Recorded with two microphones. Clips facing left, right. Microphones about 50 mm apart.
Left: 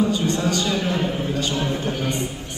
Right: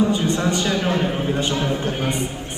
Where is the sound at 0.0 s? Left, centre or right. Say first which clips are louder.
Right 2 dB; right.